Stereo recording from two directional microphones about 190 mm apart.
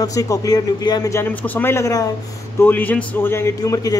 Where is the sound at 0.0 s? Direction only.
20° left (ahead or behind).